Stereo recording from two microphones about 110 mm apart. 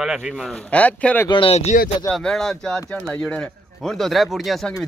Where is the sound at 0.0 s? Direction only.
5° right (ahead or behind).